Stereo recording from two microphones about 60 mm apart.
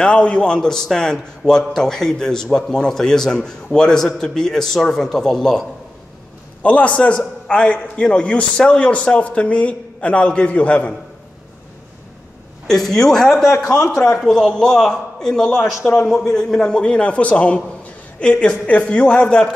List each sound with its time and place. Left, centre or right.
0.0 s a man's voice: centre
6.6 s a man's voice: left
12.6 s a man's voice: centre